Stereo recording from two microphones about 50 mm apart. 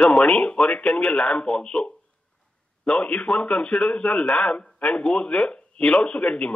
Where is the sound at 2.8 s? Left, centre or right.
Left.